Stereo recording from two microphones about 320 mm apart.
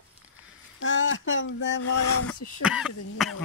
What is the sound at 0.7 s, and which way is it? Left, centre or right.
Speech, left.